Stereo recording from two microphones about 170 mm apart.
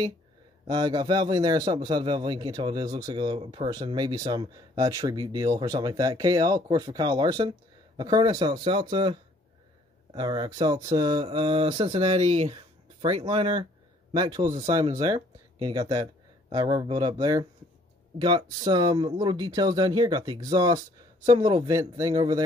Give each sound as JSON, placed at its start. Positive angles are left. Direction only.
{"t": 0.7, "sound": "a man's voice", "side_deg": -25}
{"t": 14.1, "sound": "a man's voice", "side_deg": -25}
{"t": 14.5, "sound": "speech", "side_deg": -40}
{"t": 14.8, "sound": "a man's voice", "side_deg": -20}